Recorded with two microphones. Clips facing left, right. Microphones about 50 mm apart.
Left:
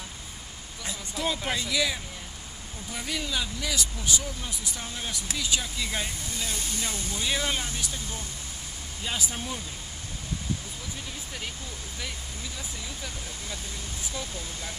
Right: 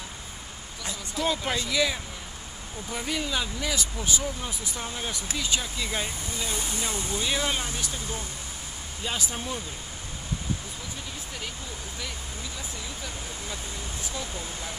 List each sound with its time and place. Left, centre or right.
0.8 s speech: centre